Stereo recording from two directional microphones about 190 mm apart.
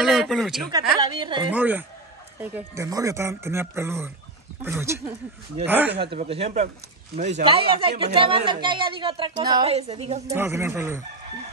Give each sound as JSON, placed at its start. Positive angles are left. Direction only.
{"t": 0.0, "sound": "speech", "side_deg": 0}
{"t": 0.7, "sound": "speech", "side_deg": -20}
{"t": 1.5, "sound": "speech", "side_deg": -10}
{"t": 5.9, "sound": "speech", "side_deg": -30}
{"t": 9.7, "sound": "speech", "side_deg": -35}
{"t": 10.2, "sound": "speech", "side_deg": -15}